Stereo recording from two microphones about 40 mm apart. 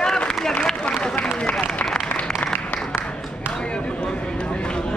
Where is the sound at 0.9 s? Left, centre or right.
Left.